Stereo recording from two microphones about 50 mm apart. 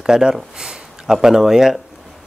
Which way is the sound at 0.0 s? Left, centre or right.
Centre.